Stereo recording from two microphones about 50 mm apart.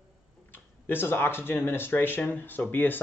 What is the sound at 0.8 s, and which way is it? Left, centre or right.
Speech, left.